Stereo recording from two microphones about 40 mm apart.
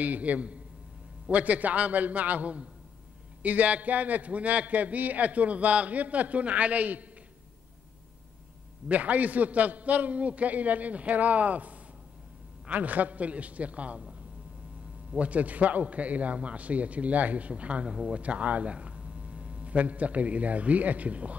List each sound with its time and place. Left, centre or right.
0.0 s a man's voice: right
8.8 s a man's voice: right
15.1 s a man's voice: right
17.8 s speech: right
18.2 s speech: right